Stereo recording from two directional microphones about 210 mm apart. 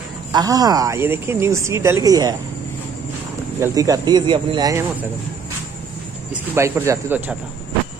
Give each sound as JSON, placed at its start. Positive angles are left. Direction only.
{"t": 0.3, "sound": "speech", "side_deg": -15}
{"t": 3.5, "sound": "speech", "side_deg": -15}
{"t": 6.3, "sound": "speech", "side_deg": -10}